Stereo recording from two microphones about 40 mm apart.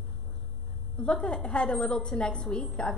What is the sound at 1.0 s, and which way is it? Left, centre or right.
A woman's voice, left.